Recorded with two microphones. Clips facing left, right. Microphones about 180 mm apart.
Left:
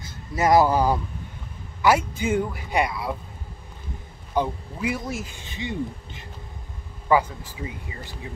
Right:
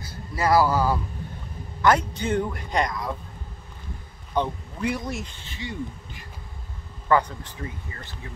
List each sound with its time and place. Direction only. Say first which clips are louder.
0.0 s a man's voice: left 3 dB; 20° left (ahead or behind)
4.3 s a man's voice: left 1 dB; 5° left (ahead or behind)
5.4 s speech: left 4 dB; 20° left (ahead or behind)
7.1 s a man's voice: left 1 dB; 5° left (ahead or behind)